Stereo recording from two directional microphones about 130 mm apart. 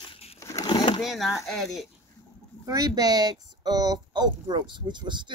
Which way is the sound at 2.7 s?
30° right (ahead or behind).